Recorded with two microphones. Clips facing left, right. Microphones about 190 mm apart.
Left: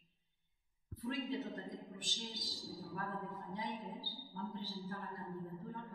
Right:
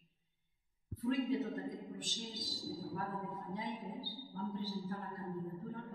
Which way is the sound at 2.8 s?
15° right (ahead or behind).